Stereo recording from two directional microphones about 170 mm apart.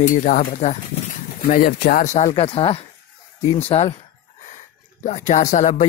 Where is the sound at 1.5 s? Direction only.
60° left (ahead or behind).